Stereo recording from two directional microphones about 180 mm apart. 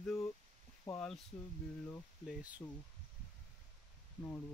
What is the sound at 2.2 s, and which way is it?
Speech, 10° right (ahead or behind).